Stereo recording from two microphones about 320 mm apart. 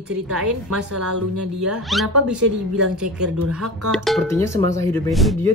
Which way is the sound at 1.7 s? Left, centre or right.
Centre.